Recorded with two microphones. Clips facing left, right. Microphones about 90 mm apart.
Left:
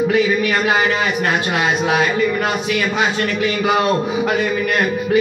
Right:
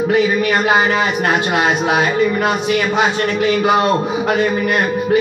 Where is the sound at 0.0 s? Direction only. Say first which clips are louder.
Right 1 dB; 25° right (ahead or behind).